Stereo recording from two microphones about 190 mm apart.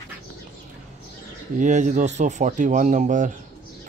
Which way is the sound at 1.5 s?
40° right (ahead or behind).